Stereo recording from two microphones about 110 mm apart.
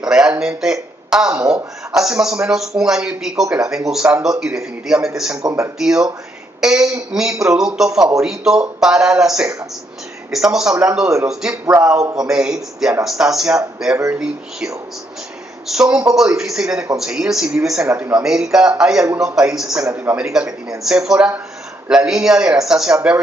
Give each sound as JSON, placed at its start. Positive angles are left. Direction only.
{"t": 0.0, "sound": "speech", "side_deg": -10}
{"t": 5.4, "sound": "speech", "side_deg": -25}
{"t": 5.8, "sound": "speech", "side_deg": -5}
{"t": 11.6, "sound": "speech", "side_deg": -30}
{"t": 12.2, "sound": "speech", "side_deg": -5}
{"t": 17.8, "sound": "speech", "side_deg": -20}
{"t": 18.2, "sound": "speech", "side_deg": -5}